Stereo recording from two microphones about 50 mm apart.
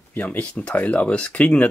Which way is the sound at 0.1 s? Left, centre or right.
Left.